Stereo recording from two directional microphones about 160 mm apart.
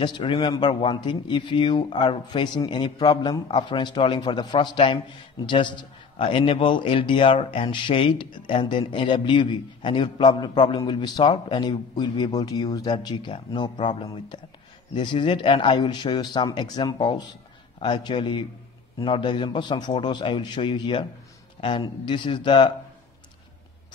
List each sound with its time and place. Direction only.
0.0 s a man's voice: 30° left (ahead or behind)